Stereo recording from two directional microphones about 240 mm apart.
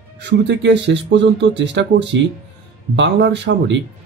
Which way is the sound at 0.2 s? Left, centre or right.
Right.